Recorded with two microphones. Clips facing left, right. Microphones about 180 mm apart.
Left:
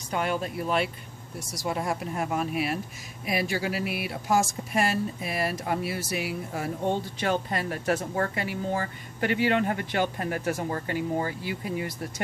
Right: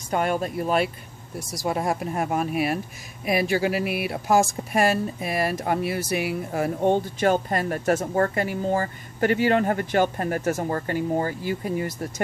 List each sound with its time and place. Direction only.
0.1 s speech: 45° right (ahead or behind)